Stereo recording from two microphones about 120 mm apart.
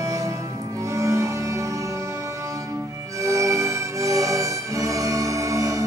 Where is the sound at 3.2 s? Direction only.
25° right (ahead or behind).